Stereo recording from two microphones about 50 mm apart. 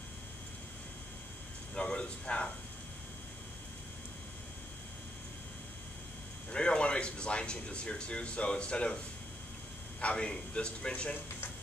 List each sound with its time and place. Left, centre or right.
1.8 s a man's voice: left
6.5 s speech: centre
9.9 s a man's voice: left